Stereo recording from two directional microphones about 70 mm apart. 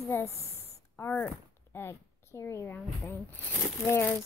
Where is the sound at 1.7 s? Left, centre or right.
Left.